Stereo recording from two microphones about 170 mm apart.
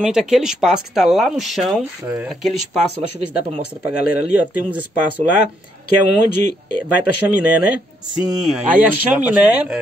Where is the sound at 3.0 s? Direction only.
35° right (ahead or behind).